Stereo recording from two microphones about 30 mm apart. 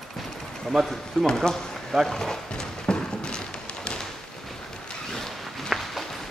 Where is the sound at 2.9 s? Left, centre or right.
Left.